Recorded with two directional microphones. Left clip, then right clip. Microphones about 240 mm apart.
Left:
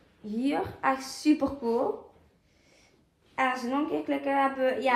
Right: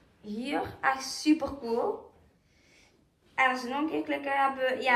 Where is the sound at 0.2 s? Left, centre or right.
Left.